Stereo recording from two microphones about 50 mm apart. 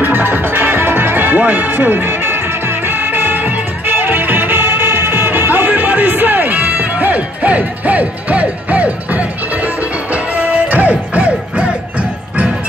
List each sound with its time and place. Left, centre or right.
0.0 s music: right